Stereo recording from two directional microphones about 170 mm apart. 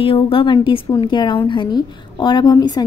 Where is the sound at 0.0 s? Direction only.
30° left (ahead or behind).